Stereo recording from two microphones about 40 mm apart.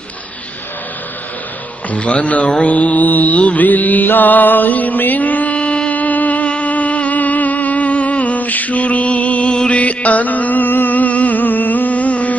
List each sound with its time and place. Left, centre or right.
1.9 s mantra: left
6.5 s music: left